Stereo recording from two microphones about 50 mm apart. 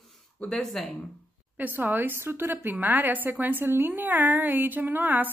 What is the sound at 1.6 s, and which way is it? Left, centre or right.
A woman's voice, right.